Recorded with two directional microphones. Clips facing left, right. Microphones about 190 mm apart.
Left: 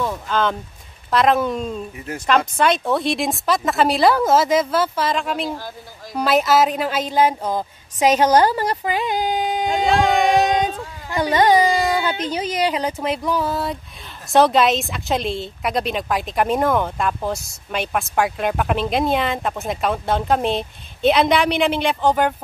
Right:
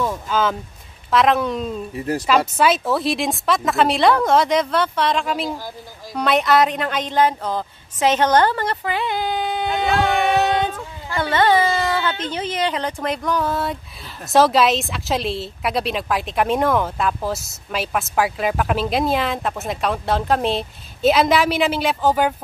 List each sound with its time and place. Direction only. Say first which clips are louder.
0.0 s a sound: even; 5° right (ahead or behind)
1.1 s a woman's voice: even; centre (ahead or behind)
2.0 s speech: right 7 dB; 35° right (ahead or behind)
2.2 s a woman's voice: even; 5° right (ahead or behind)